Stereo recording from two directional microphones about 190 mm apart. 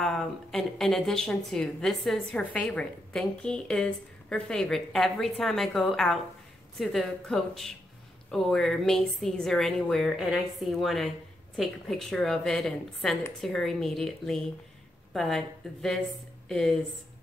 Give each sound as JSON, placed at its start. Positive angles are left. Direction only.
{"t": 0.0, "sound": "a woman's voice", "side_deg": 0}